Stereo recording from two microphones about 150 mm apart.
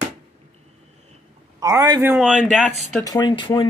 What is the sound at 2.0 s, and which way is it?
Speech, 10° right (ahead or behind).